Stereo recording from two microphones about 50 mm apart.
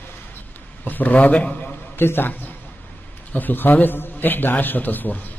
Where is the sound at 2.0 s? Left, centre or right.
Left.